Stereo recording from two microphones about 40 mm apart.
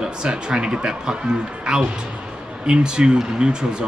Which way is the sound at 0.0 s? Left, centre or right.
Centre.